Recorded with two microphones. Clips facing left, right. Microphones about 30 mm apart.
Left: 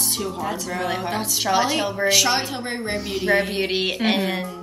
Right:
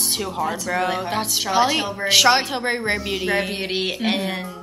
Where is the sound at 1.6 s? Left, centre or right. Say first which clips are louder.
Right 2 dB; right.